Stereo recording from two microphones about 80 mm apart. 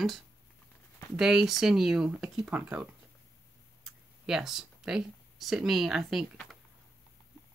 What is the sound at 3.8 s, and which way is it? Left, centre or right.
Speech, centre.